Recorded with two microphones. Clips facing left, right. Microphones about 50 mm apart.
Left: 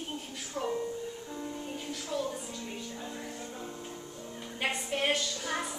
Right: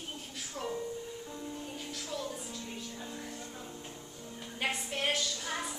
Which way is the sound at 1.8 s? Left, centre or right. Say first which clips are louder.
Left 6 dB; centre.